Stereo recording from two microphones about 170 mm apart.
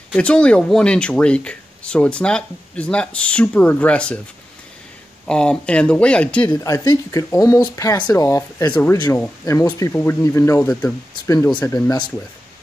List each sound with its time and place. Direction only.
0.1 s speech: 5° left (ahead or behind)
5.2 s speech: 5° left (ahead or behind)
6.5 s speech: 20° left (ahead or behind)
11.6 s speech: 20° left (ahead or behind)